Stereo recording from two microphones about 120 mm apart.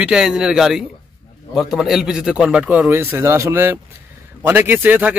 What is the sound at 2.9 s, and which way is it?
A man's voice, 20° right (ahead or behind).